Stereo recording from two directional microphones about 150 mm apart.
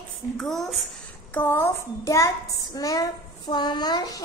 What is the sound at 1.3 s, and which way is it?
A child's voice, 15° left (ahead or behind).